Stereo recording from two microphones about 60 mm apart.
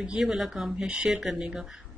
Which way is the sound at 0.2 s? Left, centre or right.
Centre.